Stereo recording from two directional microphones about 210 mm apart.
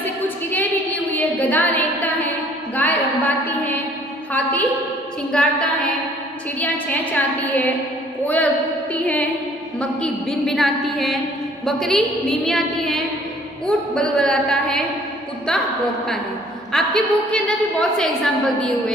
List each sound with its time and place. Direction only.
0.0 s a sound: 10° left (ahead or behind)
4.3 s a woman's voice: 5° left (ahead or behind)
8.9 s a woman's voice: 5° left (ahead or behind)
16.7 s a woman's voice: 5° left (ahead or behind)